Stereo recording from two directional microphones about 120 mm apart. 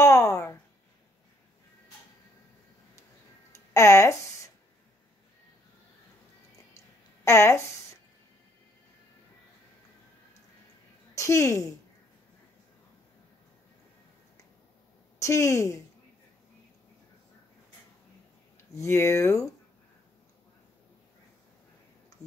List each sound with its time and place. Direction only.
0.0 s speech: 25° left (ahead or behind)
3.5 s a sound: 25° left (ahead or behind)
7.2 s a woman's voice: 25° left (ahead or behind)
11.1 s a woman's voice: 25° left (ahead or behind)
15.1 s a woman's voice: 25° left (ahead or behind)
18.8 s a woman's voice: 25° left (ahead or behind)